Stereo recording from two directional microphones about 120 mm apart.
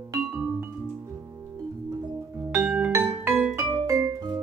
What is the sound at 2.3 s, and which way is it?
Music, 20° right (ahead or behind).